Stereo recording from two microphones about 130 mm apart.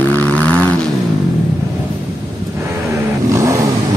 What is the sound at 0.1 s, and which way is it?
Vehicle, 15° left (ahead or behind).